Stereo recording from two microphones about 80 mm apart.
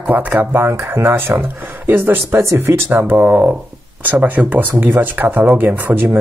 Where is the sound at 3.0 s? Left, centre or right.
Centre.